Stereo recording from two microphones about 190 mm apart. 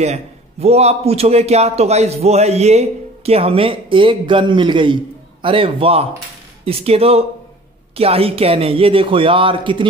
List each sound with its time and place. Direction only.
0.0 s a man's voice: 35° right (ahead or behind)